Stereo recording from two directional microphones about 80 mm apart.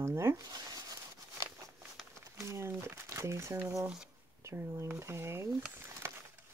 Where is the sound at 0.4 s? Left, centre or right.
Right.